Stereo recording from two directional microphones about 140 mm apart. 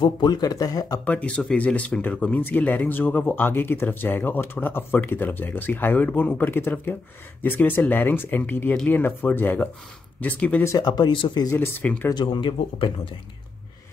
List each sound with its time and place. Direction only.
0.0 s speech: 30° left (ahead or behind)
1.0 s speech: 10° left (ahead or behind)
10.7 s speech: 30° left (ahead or behind)
11.5 s speech: 10° left (ahead or behind)
12.1 s speech: 35° left (ahead or behind)